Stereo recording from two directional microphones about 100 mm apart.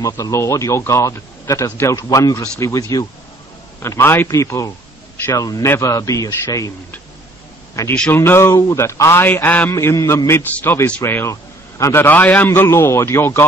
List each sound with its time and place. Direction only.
0.0 s speech: 30° left (ahead or behind)
3.8 s a man's voice: 25° left (ahead or behind)
7.8 s a man's voice: 30° left (ahead or behind)